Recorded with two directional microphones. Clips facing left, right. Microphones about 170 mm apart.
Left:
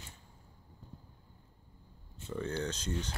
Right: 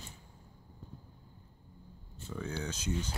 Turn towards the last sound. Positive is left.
turn(degrees=-5)  # may be behind; listen again after turning